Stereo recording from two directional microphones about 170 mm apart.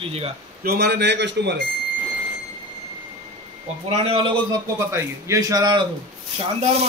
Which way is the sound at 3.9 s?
35° right (ahead or behind).